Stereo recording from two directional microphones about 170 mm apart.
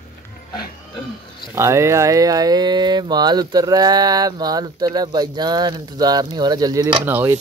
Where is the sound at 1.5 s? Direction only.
15° right (ahead or behind).